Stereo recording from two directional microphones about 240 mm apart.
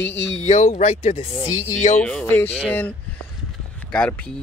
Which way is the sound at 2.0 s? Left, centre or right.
Centre.